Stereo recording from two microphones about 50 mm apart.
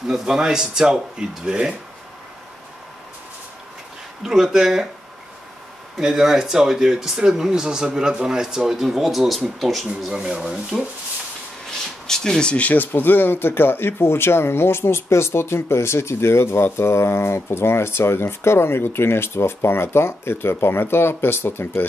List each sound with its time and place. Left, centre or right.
0.0 s speech: centre
4.2 s speech: centre
5.9 s speech: centre
10.0 s speech: centre
12.1 s speech: centre
12.5 s speech: left